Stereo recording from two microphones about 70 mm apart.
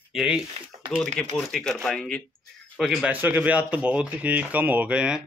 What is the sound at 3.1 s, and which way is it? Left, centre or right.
Speech, right.